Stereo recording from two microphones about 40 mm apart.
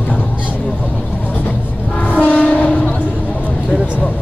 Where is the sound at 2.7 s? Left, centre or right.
Left.